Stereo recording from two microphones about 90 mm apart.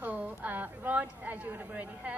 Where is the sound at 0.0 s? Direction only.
20° right (ahead or behind).